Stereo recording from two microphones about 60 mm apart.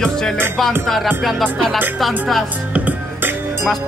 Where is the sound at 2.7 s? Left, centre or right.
Right.